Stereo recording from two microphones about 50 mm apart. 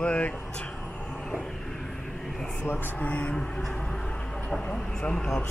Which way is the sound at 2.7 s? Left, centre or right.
Left.